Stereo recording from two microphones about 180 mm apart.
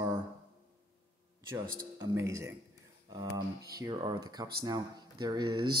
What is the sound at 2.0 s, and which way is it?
Speech, 15° right (ahead or behind).